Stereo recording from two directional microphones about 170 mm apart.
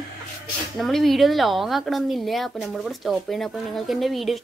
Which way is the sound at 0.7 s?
Centre (ahead or behind).